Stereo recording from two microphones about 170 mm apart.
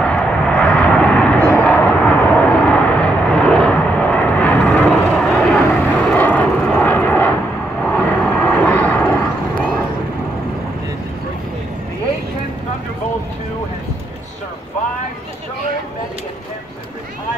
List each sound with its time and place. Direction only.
0.1 s vehicle: 5° left (ahead or behind)